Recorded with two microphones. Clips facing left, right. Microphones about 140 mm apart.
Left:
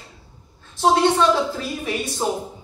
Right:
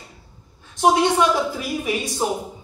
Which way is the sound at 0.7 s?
15° right (ahead or behind).